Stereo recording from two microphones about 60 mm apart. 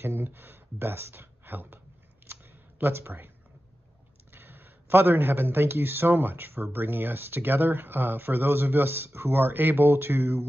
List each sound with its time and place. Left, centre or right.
0.0 s speech: right
2.8 s speech: right
4.3 s speech: right